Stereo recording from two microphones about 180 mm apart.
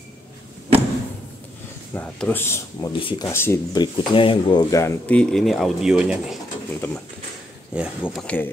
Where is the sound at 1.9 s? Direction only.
10° left (ahead or behind).